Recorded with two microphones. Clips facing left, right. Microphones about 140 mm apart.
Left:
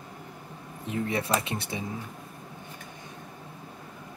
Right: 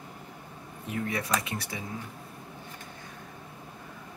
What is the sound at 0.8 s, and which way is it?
Speech, 25° left (ahead or behind).